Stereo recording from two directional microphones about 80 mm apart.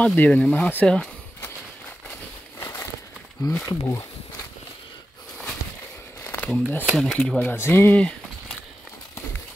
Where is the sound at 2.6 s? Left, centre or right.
Left.